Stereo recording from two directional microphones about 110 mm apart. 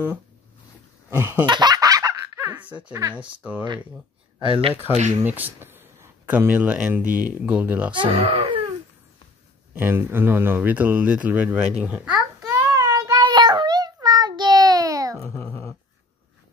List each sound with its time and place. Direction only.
1.1 s laughter: 20° right (ahead or behind)
1.4 s laughter: 40° right (ahead or behind)
3.2 s speech: 15° right (ahead or behind)
4.4 s speech: 55° right (ahead or behind)
5.1 s speech: 15° right (ahead or behind)
7.9 s speech: 55° right (ahead or behind)
9.8 s speech: 20° right (ahead or behind)
12.4 s child singing: 30° right (ahead or behind)
13.2 s dog: 45° right (ahead or behind)
14.0 s child singing: 35° right (ahead or behind)
15.2 s dog: 25° left (ahead or behind)